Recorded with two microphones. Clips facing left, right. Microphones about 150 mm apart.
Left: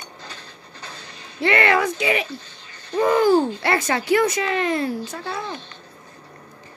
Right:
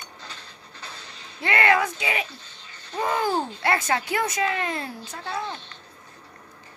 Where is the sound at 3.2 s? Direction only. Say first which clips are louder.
Left 8 dB; 85° left.